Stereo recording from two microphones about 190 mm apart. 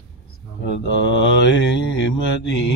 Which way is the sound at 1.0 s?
70° left (ahead or behind).